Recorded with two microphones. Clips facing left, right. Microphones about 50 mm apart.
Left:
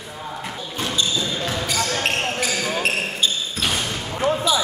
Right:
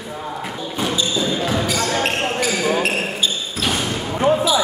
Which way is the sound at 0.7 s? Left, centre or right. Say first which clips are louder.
Right 2 dB; centre.